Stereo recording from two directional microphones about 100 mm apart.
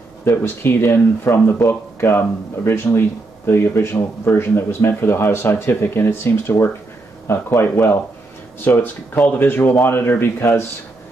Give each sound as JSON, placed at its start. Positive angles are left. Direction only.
{"t": 0.2, "sound": "speech", "side_deg": 25}